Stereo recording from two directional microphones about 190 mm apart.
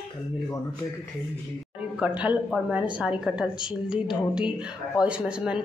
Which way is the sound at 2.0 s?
5° right (ahead or behind).